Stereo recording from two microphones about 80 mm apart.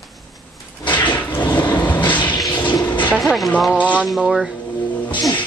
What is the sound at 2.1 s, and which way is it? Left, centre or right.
Toilet flush, left.